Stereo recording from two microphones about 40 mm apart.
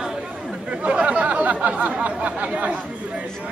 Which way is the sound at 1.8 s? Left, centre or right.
Right.